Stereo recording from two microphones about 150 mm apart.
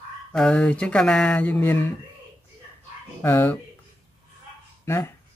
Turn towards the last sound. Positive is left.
turn(degrees=15)  # may be behind; listen again after turning